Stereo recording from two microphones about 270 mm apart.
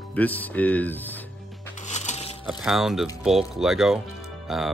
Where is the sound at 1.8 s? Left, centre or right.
Left.